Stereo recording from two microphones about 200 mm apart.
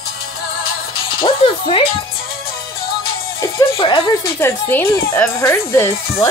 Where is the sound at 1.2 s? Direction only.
25° left (ahead or behind).